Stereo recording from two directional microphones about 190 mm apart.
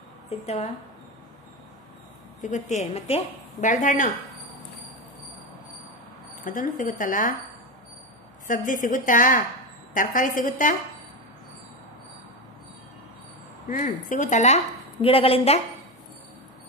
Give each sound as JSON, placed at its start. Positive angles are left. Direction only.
{"t": 0.3, "sound": "a woman's voice", "side_deg": 35}
{"t": 2.4, "sound": "a woman's voice", "side_deg": 40}
{"t": 6.4, "sound": "speech", "side_deg": 45}
{"t": 8.5, "sound": "speech", "side_deg": 45}
{"t": 13.7, "sound": "a woman's voice", "side_deg": 45}